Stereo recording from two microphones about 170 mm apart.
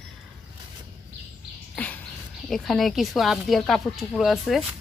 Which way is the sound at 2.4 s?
Centre (ahead or behind).